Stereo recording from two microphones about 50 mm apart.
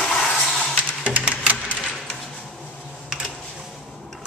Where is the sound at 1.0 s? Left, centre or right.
Right.